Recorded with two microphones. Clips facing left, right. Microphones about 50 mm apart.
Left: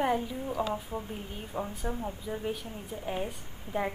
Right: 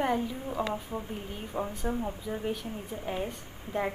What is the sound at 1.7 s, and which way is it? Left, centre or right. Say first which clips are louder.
A woman's voice: right 3 dB; centre.